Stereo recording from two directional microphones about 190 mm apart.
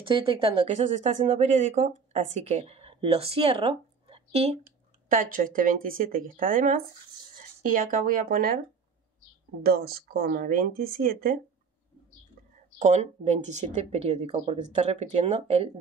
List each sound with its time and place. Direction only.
0.0 s speech: 25° right (ahead or behind)
5.1 s speech: 45° right (ahead or behind)
9.6 s speech: 55° right (ahead or behind)
12.7 s speech: 40° right (ahead or behind)